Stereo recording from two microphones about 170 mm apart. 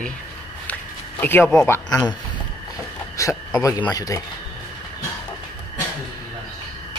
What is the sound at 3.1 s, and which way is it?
Speech, 20° left (ahead or behind).